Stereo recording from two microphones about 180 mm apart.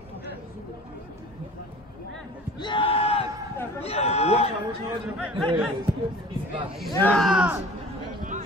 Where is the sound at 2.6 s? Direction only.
25° left (ahead or behind).